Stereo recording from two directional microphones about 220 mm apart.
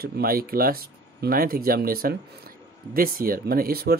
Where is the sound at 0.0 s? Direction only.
40° right (ahead or behind).